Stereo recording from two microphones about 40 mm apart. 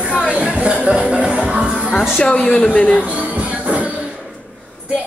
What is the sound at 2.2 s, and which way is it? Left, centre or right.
Speech, left.